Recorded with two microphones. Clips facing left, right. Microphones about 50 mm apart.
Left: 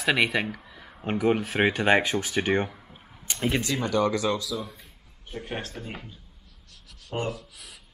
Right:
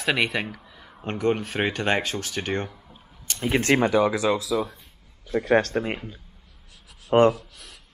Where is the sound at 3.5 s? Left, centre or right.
Right.